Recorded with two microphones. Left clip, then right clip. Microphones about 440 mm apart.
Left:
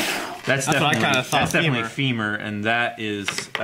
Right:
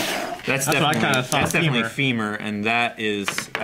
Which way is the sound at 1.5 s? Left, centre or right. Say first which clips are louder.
Even; left.